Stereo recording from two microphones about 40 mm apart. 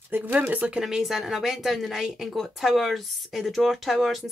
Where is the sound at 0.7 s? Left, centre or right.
Centre.